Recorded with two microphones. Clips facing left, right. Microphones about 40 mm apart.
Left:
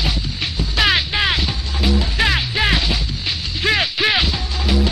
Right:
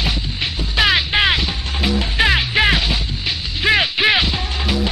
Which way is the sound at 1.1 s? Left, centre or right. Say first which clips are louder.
Right 3 dB; right.